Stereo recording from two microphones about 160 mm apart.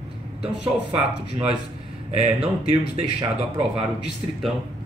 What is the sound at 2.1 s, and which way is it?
Speech, 40° right (ahead or behind).